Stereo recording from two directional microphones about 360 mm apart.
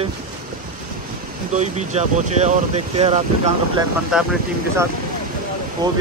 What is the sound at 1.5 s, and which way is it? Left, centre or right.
Speech, centre.